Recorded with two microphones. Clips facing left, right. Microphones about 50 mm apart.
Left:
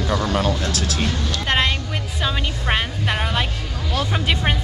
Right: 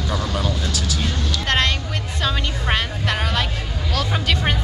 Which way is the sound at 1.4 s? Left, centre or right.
Centre.